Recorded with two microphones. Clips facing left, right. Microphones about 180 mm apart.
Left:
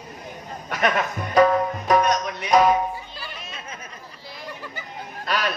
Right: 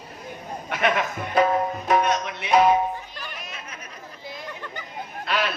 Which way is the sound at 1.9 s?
40° left (ahead or behind).